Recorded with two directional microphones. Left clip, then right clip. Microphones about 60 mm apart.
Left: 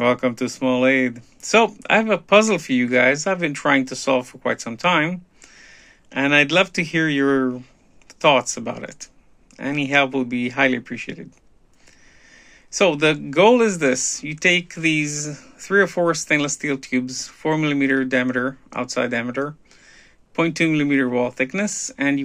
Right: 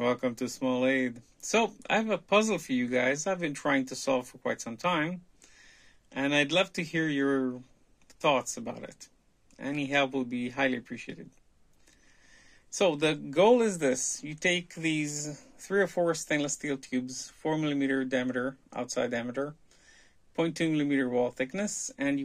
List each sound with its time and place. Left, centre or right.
0.0 s speech: right
4.6 s a sound: right
6.1 s speech: right
6.8 s speech: right
8.7 s speech: right
9.6 s speech: right
12.7 s speech: right